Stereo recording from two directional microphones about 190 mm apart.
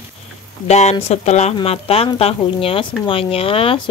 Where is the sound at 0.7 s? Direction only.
35° left (ahead or behind).